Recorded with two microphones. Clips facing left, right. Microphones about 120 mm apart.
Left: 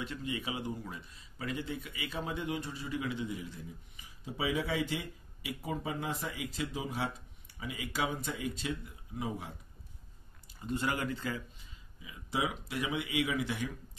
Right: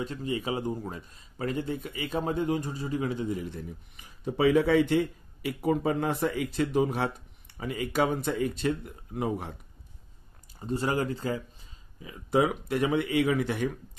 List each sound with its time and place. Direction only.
0.0 s a man's voice: 35° right (ahead or behind)
3.4 s speech: 60° right (ahead or behind)
10.6 s a man's voice: 35° right (ahead or behind)
12.0 s speech: 50° right (ahead or behind)